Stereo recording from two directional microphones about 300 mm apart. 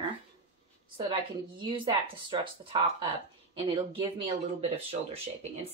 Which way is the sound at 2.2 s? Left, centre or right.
Centre.